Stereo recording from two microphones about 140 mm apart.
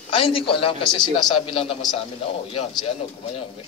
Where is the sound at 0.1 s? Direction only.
40° left (ahead or behind).